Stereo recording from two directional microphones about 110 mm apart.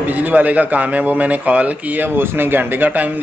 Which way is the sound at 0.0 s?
15° right (ahead or behind).